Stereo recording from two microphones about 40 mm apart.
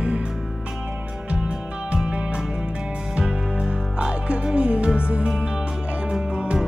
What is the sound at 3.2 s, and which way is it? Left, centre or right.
Music, right.